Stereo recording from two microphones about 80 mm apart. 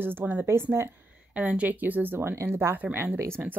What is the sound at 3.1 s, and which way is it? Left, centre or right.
Speech, right.